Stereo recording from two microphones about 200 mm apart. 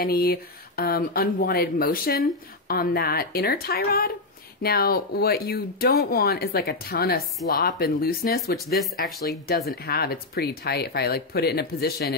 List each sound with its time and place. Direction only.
0.0 s speech: 50° left (ahead or behind)